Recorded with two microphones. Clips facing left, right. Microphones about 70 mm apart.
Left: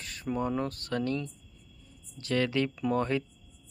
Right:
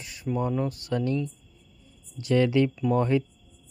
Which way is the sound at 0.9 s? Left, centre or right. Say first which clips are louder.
Right 4 dB; centre.